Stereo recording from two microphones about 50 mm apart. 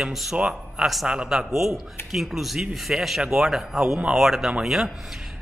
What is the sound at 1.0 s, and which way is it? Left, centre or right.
Speech, right.